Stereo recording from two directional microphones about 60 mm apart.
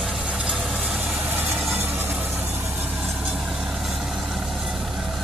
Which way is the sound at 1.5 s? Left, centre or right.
Centre.